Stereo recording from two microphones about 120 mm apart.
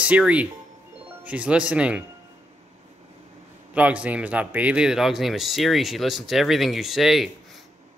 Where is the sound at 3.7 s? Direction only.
10° right (ahead or behind).